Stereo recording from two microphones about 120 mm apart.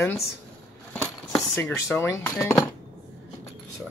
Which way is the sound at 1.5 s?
20° left (ahead or behind).